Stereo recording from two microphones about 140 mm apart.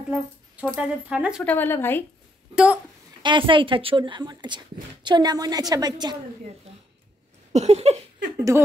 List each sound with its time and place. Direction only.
0.1 s speech: 5° right (ahead or behind)
1.4 s speech: 10° left (ahead or behind)
2.5 s speech: 10° right (ahead or behind)
3.2 s a woman's voice: 35° right (ahead or behind)
6.7 s a sound: 50° right (ahead or behind)